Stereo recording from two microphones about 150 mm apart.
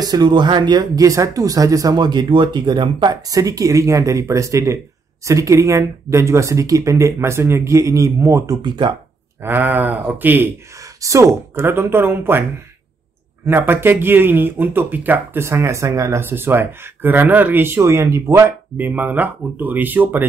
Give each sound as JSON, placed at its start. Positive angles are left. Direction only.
{"t": 0.0, "sound": "speech", "side_deg": -30}
{"t": 9.4, "sound": "speech", "side_deg": -15}
{"t": 13.5, "sound": "speech", "side_deg": -15}